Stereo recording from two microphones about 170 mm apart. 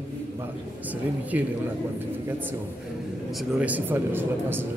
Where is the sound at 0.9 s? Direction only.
10° right (ahead or behind).